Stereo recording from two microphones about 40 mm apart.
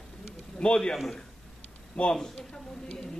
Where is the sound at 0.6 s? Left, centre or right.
Left.